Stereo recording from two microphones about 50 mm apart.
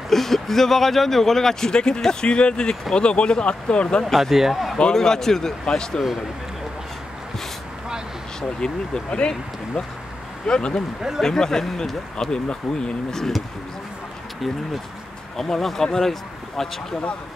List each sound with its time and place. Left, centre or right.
0.1 s speech: centre
4.0 s speech: centre
4.7 s speech: centre
8.4 s speech: centre
15.3 s speech: centre